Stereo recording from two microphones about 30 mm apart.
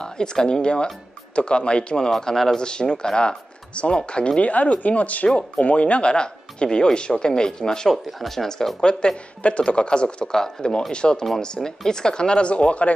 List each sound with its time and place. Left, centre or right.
0.0 s speech: left
2.0 s speech: left
4.4 s speech: left
7.9 s speech: centre
9.0 s speech: left